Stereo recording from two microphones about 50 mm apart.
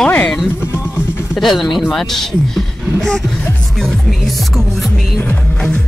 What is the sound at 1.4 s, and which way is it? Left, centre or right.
Speech, centre.